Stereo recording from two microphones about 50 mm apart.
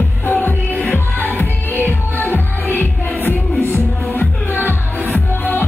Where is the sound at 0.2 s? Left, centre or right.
Left.